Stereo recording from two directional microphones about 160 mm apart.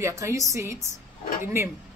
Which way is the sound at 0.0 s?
20° right (ahead or behind).